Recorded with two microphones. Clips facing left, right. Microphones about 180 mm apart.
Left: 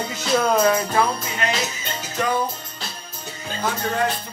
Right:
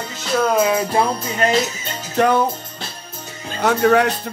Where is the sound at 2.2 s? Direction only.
65° right (ahead or behind).